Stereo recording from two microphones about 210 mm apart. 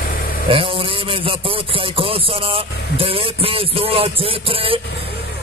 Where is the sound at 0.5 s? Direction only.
25° right (ahead or behind).